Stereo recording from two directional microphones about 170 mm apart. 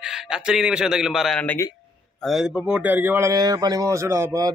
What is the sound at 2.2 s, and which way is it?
Speech, 5° right (ahead or behind).